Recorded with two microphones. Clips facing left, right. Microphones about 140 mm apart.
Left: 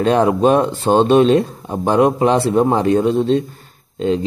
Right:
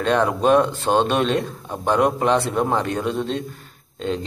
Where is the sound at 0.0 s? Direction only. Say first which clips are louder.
Left 5 dB; 35° left (ahead or behind).